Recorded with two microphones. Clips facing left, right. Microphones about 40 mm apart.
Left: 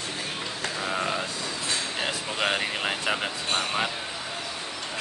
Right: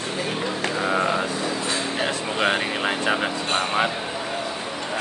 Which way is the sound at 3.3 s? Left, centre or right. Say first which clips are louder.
Right 4 dB; right.